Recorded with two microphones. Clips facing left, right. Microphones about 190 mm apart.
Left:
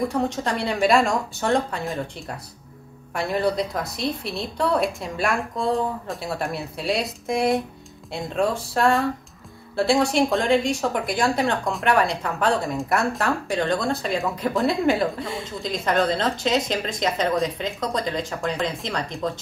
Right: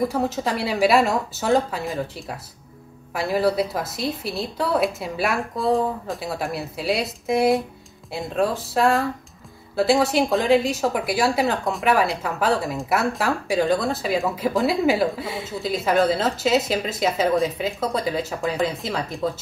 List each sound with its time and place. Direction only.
0.1 s speech: 5° right (ahead or behind)